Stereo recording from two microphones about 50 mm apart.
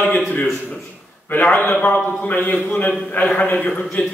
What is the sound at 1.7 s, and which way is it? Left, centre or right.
A man's voice, left.